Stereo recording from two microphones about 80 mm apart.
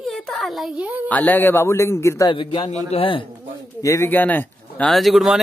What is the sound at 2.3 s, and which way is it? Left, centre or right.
Speech, left.